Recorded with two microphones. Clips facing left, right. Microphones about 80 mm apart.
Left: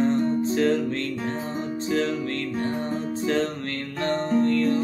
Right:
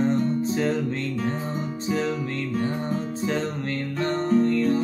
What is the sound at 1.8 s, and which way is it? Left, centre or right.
Music, centre.